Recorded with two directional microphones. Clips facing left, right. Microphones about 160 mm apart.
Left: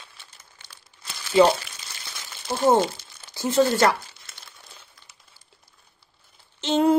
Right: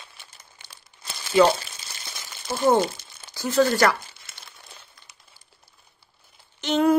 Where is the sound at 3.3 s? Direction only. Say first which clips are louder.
Even; 25° left (ahead or behind).